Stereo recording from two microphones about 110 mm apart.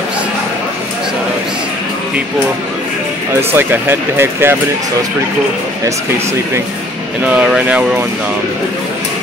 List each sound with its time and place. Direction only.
3.3 s speech: 20° right (ahead or behind)
7.2 s speech: 15° right (ahead or behind)